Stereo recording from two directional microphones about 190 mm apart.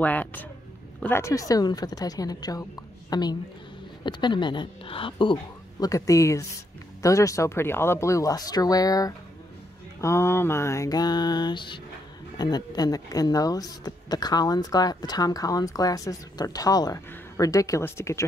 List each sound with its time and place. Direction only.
0.0 s a woman's voice: 10° left (ahead or behind)